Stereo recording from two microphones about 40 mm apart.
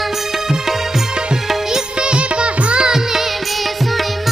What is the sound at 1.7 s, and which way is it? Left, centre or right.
Music, right.